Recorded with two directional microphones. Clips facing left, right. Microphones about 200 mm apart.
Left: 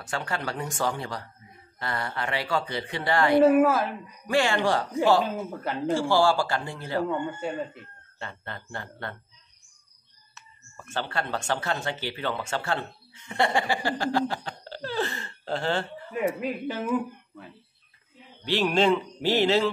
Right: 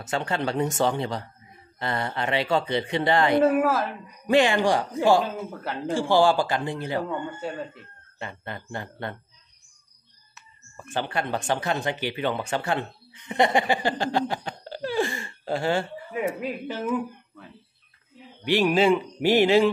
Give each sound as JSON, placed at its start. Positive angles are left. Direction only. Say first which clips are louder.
{"t": 0.0, "sound": "speech", "louder": "right 5 dB", "side_deg": -20}
{"t": 3.4, "sound": "speech", "louder": "left 2 dB", "side_deg": 0}
{"t": 4.3, "sound": "speech", "louder": "right 4 dB", "side_deg": -20}
{"t": 5.6, "sound": "speech", "louder": "left 3 dB", "side_deg": 0}
{"t": 5.9, "sound": "speech", "louder": "right 3 dB", "side_deg": -15}
{"t": 8.2, "sound": "speech", "louder": "right 3 dB", "side_deg": -15}
{"t": 10.3, "sound": "speech", "louder": "right 2 dB", "side_deg": -15}
{"t": 18.4, "sound": "speech", "louder": "right 3 dB", "side_deg": -15}